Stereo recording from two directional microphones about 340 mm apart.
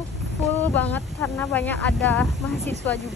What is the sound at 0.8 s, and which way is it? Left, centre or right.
Speech, centre.